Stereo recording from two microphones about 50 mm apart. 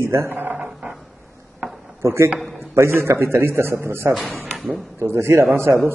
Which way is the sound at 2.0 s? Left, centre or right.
Right.